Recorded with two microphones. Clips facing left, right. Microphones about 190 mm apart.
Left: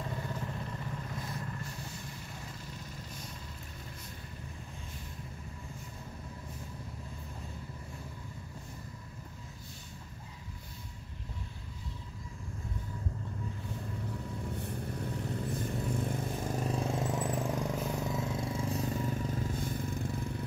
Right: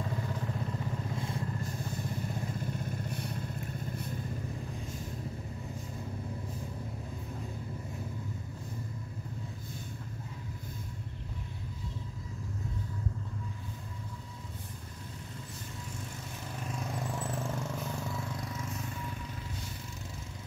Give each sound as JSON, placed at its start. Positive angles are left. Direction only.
{"t": 1.1, "sound": "vehicle", "side_deg": -25}
{"t": 2.6, "sound": "vehicle", "side_deg": -55}
{"t": 14.5, "sound": "vehicle", "side_deg": 65}
{"t": 16.5, "sound": "vehicle", "side_deg": 35}